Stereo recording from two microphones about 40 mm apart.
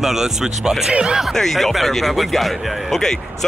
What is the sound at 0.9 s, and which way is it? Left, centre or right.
Speech, right.